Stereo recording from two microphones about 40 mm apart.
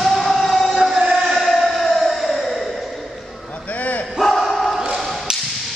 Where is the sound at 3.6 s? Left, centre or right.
Left.